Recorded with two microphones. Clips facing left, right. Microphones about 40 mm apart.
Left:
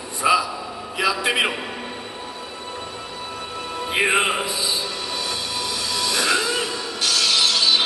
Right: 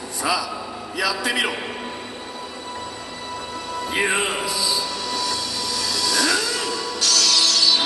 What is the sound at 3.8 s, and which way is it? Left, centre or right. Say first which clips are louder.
Music: left 3 dB; left.